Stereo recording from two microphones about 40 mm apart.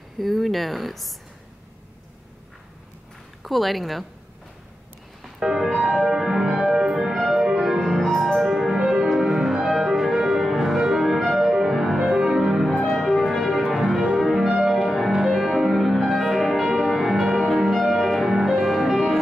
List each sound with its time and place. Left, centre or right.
0.2 s speech: centre
3.4 s speech: centre
5.4 s music: centre